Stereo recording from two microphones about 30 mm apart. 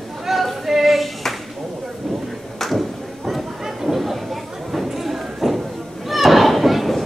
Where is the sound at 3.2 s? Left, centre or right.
Centre.